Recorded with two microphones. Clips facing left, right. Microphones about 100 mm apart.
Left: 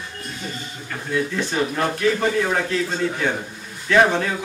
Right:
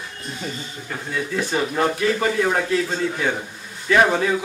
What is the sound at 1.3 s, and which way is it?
A man's voice, 5° right (ahead or behind).